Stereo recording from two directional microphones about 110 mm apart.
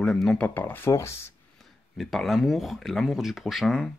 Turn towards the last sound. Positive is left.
turn(degrees=5)  # may be behind; listen again after turning